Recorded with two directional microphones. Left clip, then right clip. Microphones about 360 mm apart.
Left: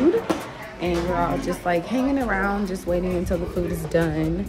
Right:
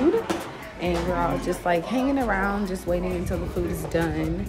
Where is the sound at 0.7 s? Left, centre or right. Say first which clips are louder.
Left 2 dB; centre.